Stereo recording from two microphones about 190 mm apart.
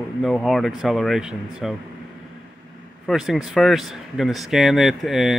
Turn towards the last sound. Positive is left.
turn(degrees=0)  # may be behind; listen again after turning